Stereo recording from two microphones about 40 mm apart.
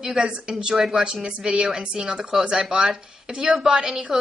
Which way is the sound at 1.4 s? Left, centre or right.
Centre.